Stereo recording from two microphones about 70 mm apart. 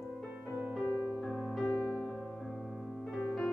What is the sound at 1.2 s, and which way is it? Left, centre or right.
Music, centre.